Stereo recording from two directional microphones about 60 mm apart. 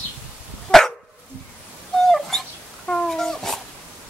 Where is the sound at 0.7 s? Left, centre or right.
Centre.